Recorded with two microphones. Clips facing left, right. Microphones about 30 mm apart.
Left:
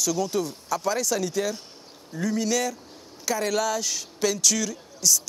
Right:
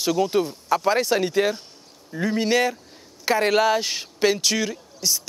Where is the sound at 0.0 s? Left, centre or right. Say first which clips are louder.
Right 5 dB; right.